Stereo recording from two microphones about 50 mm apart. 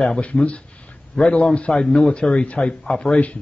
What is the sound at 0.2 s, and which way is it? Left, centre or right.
A man's voice, left.